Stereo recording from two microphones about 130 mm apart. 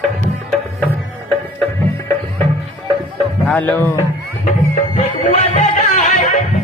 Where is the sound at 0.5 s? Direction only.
10° left (ahead or behind).